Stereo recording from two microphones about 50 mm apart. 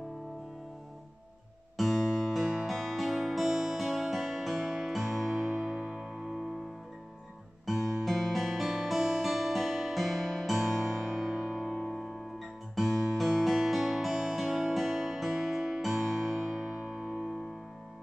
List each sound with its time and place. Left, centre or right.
1.8 s music: centre
5.7 s music: centre
7.6 s music: centre
15.8 s music: centre